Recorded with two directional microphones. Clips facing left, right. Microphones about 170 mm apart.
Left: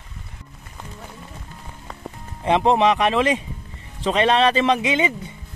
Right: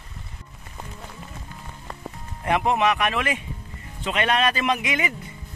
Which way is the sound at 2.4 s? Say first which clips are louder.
Left 4 dB; 25° left (ahead or behind).